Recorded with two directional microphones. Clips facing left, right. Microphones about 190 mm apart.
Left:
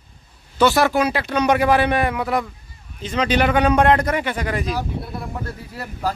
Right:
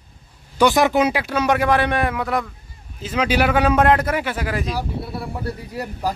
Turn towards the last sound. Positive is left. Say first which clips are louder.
# right 1 dB
turn(degrees=-15)  # may be behind; listen again after turning